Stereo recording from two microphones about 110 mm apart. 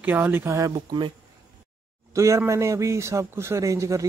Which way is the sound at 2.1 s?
25° right (ahead or behind).